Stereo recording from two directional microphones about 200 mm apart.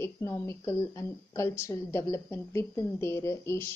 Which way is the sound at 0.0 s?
15° left (ahead or behind).